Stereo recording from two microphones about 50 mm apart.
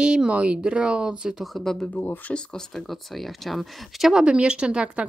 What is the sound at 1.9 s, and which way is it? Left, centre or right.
Speech, left.